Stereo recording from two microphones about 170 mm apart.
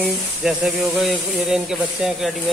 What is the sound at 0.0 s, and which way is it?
Speech, centre (ahead or behind).